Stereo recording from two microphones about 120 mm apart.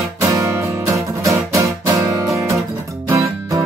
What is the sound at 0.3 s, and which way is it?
Music, 25° right (ahead or behind).